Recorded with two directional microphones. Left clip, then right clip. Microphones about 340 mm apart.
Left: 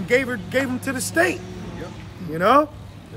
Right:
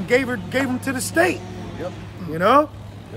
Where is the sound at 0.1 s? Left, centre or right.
Centre.